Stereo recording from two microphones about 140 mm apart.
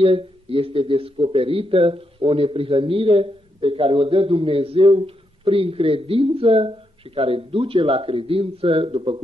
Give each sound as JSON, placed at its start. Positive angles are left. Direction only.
{"t": 0.0, "sound": "speech", "side_deg": -40}